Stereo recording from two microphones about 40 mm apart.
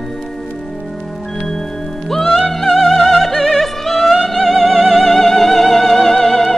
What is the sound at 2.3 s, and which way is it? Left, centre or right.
Opera, centre.